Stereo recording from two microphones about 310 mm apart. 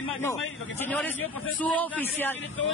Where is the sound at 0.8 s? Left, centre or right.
Centre.